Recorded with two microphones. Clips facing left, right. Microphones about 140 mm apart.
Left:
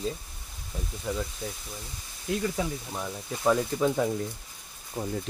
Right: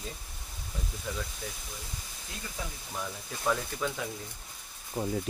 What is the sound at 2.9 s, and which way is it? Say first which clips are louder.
Speech: left 4 dB; 30° left (ahead or behind).